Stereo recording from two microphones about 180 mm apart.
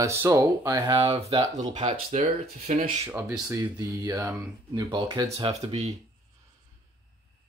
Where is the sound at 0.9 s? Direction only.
30° right (ahead or behind).